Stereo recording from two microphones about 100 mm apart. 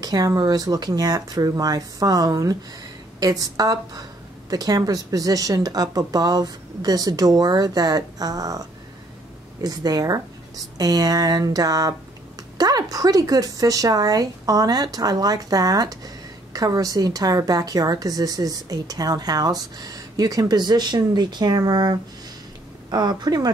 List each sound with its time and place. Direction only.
0.0 s a woman's voice: 40° right (ahead or behind)